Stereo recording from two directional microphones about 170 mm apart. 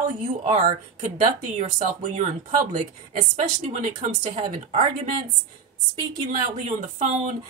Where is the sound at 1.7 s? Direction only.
40° right (ahead or behind).